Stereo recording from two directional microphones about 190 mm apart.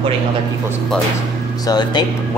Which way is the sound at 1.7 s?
20° left (ahead or behind).